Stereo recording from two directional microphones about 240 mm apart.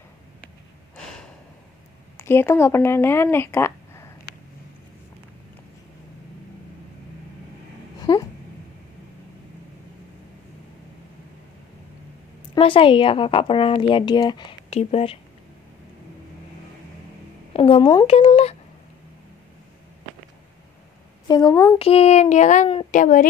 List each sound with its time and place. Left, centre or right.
2.1 s speech: centre
12.5 s speech: left
17.5 s a woman's voice: left
21.3 s a woman's voice: centre
21.7 s speech: left